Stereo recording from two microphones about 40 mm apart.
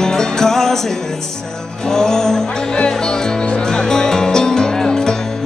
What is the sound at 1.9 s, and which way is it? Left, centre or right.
Music, centre.